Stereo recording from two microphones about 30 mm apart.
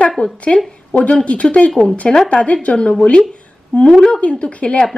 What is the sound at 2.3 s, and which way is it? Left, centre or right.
Speech, left.